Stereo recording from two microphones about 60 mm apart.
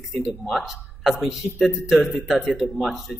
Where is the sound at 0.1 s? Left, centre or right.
Centre.